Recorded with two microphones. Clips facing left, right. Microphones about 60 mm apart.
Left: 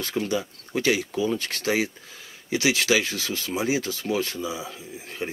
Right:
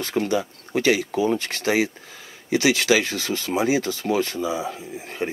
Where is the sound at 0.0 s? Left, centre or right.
Right.